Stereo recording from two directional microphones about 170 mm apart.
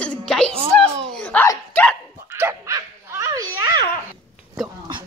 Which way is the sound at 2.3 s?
15° right (ahead or behind).